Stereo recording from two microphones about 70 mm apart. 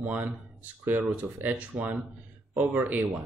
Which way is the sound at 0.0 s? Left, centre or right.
Right.